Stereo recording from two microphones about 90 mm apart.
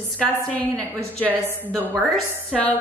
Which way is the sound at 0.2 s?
15° left (ahead or behind).